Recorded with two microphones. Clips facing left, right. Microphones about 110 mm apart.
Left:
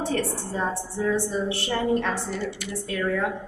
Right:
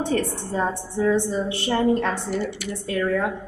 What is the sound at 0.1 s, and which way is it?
A woman's voice, 15° right (ahead or behind).